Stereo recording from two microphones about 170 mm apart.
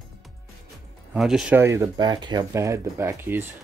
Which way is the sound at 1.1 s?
5° right (ahead or behind).